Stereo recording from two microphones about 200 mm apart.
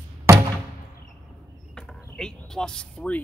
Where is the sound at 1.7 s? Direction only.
5° left (ahead or behind).